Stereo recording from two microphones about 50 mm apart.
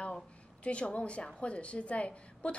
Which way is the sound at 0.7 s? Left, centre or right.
Left.